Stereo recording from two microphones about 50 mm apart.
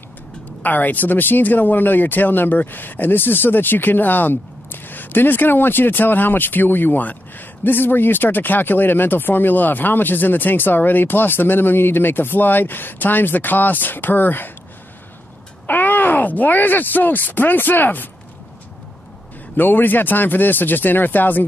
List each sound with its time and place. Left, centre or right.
0.6 s speech: left
15.6 s speech: left
19.5 s speech: left